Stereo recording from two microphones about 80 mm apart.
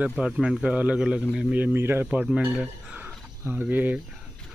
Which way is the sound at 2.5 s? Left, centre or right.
Centre.